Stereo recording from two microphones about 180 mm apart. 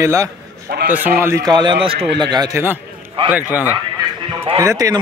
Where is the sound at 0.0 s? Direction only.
15° right (ahead or behind).